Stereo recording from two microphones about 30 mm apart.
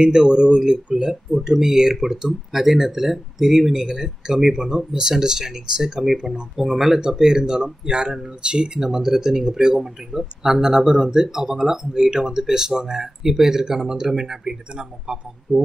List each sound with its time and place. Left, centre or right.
0.0 s speech: right; by 7.0 s centre
7.0 s speech: right
8.7 s speech: centre